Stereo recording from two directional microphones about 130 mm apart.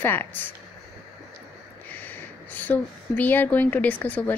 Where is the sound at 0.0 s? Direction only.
15° left (ahead or behind).